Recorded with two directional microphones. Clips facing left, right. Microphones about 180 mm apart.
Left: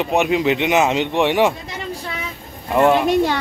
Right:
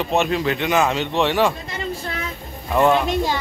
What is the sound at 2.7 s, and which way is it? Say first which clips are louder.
Speech: left 2 dB; 15° left (ahead or behind).